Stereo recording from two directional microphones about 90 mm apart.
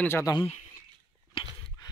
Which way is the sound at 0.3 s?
45° left (ahead or behind).